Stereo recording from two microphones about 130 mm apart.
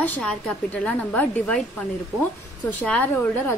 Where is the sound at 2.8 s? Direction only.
10° left (ahead or behind).